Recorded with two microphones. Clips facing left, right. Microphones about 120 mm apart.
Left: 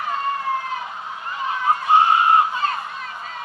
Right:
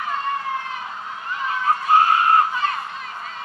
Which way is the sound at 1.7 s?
20° left (ahead or behind).